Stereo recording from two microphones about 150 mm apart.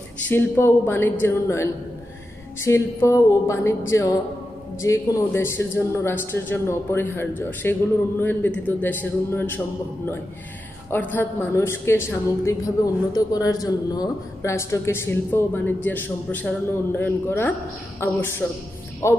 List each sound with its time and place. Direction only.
0.3 s a woman's voice: 15° left (ahead or behind)
10.9 s a woman's voice: 10° left (ahead or behind)